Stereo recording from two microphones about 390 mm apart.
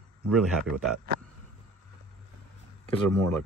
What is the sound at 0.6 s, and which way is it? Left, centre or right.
Speech, right.